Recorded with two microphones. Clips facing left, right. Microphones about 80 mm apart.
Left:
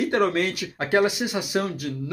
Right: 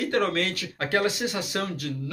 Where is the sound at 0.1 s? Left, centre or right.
Centre.